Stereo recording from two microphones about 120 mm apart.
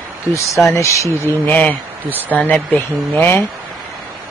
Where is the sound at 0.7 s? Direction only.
20° left (ahead or behind).